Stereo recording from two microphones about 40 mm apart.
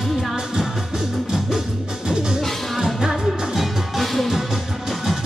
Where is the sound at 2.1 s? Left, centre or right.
Centre.